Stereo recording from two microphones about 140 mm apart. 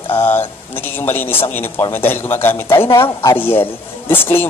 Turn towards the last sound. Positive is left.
turn(degrees=15)  # may be behind; listen again after turning